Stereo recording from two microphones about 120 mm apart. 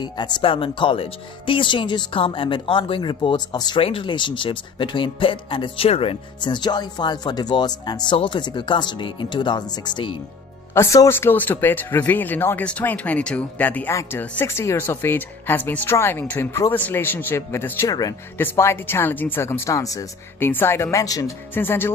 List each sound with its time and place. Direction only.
0.0 s speech: 40° left (ahead or behind)
6.4 s speech: 40° left (ahead or behind)
10.7 s speech: 25° left (ahead or behind)
17.8 s speech: 30° left (ahead or behind)
18.4 s speech: 20° left (ahead or behind)
20.3 s speech: 20° left (ahead or behind)
21.5 s speech: 20° left (ahead or behind)